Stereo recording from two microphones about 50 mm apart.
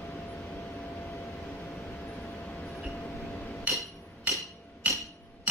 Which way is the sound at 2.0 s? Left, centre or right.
Left.